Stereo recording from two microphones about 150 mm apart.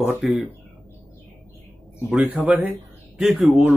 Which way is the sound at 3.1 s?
Centre (ahead or behind).